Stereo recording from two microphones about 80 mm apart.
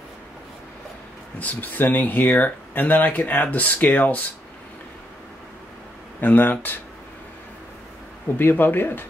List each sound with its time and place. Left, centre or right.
1.4 s speech: left
6.2 s speech: left
8.4 s speech: left